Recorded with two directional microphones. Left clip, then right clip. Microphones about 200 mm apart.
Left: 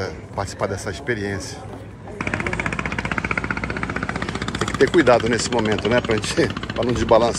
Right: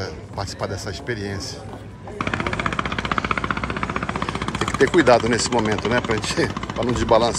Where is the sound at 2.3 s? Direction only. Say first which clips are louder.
Even; 50° right (ahead or behind).